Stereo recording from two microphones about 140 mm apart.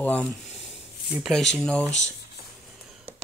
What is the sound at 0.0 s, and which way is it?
Speech, 10° left (ahead or behind).